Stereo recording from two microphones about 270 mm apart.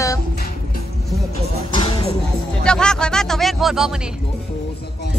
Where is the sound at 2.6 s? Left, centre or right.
Centre.